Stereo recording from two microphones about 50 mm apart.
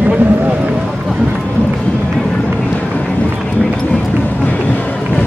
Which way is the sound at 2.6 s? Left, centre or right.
Left.